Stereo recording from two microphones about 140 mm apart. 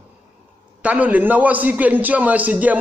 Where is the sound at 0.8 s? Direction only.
10° right (ahead or behind).